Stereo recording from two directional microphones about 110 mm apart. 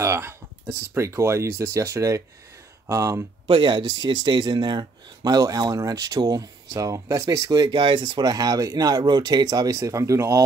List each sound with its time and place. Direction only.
0.0 s speech: 25° right (ahead or behind)
3.4 s speech: 50° right (ahead or behind); by 10.4 s 30° right (ahead or behind)